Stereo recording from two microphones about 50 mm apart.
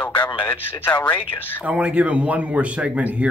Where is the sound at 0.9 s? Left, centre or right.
Left.